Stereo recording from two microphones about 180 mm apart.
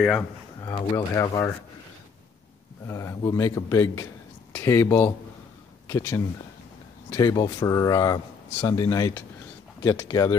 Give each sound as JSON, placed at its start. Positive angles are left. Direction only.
{"t": 0.6, "sound": "speech", "side_deg": 15}
{"t": 2.9, "sound": "speech", "side_deg": 15}